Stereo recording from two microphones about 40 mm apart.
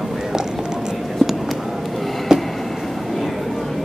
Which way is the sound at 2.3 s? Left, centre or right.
Centre.